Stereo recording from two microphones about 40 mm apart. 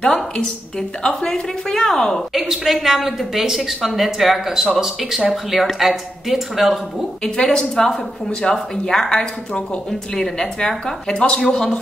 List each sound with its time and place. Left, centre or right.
0.0 s a woman's voice: centre
2.3 s a woman's voice: centre
7.2 s a woman's voice: centre
11.1 s a woman's voice: left